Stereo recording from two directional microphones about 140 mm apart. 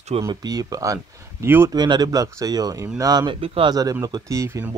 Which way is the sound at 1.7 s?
30° right (ahead or behind).